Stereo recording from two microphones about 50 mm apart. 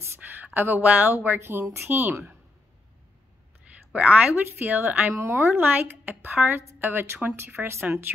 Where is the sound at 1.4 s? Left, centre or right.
Right.